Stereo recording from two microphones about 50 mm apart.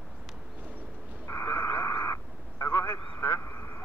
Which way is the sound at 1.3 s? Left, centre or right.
Left.